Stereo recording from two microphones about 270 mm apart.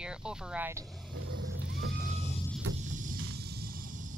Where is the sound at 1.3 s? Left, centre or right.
Right.